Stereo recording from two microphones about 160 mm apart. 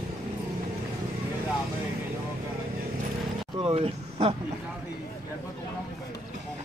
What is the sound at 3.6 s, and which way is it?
Speech, 40° right (ahead or behind).